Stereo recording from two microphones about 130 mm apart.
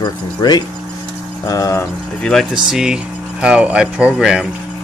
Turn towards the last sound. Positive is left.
turn(degrees=-5)  # may be behind; listen again after turning